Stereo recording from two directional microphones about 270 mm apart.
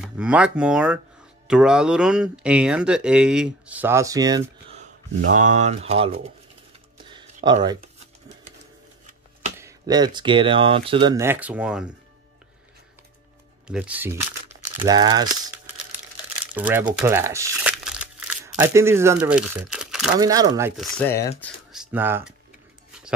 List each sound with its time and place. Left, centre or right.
0.0 s speech: centre
5.2 s speech: right
7.4 s speech: centre
9.6 s speech: centre
13.7 s speech: centre
16.5 s speech: centre
20.2 s speech: centre